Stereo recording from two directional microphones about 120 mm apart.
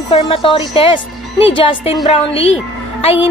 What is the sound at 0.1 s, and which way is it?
Speech, 45° left (ahead or behind).